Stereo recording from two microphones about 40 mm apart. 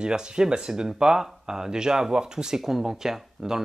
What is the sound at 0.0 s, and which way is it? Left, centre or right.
Speech, centre.